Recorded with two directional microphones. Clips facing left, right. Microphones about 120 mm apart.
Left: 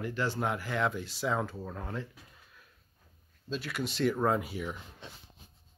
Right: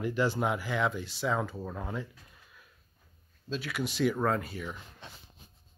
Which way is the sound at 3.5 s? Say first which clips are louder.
Right 1 dB; centre (ahead or behind).